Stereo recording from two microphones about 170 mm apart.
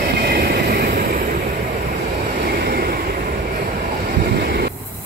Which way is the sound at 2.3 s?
60° right (ahead or behind).